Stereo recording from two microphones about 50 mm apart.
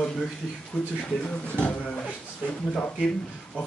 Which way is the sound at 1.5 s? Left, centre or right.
Left.